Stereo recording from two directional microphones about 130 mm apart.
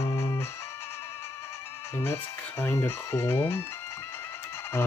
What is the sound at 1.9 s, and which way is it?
Speech, 20° left (ahead or behind).